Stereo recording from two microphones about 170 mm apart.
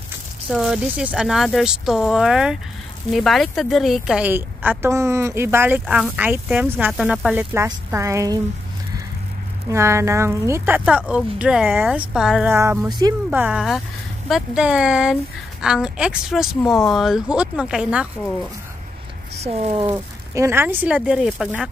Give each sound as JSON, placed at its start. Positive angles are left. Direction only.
{"t": 0.5, "sound": "a woman's voice", "side_deg": 0}
{"t": 9.7, "sound": "a woman's voice", "side_deg": -15}
{"t": 19.3, "sound": "speech", "side_deg": -40}
{"t": 19.9, "sound": "speech", "side_deg": -15}